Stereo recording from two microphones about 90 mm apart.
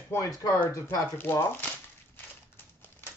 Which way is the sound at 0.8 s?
25° left (ahead or behind).